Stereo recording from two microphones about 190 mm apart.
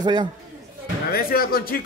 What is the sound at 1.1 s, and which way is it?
Speech, 50° left (ahead or behind).